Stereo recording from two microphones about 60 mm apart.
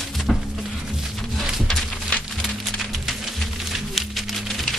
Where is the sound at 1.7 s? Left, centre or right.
Centre.